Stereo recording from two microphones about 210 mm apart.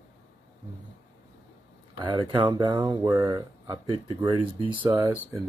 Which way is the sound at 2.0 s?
20° right (ahead or behind).